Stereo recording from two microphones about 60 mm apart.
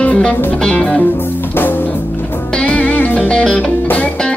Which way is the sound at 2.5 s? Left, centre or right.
Centre.